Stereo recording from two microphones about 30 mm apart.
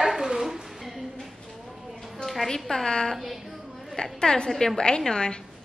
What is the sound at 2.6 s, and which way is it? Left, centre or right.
Speech, centre.